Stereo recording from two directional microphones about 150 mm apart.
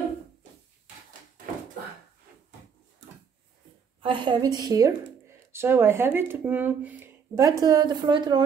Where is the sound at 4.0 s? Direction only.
35° right (ahead or behind).